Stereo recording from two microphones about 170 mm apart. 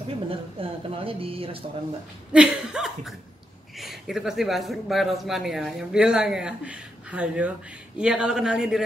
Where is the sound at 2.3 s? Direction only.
5° right (ahead or behind).